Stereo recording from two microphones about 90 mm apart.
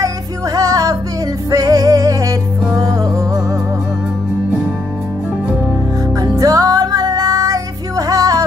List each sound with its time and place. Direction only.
0.6 s music: 40° right (ahead or behind)
6.3 s music: 40° right (ahead or behind)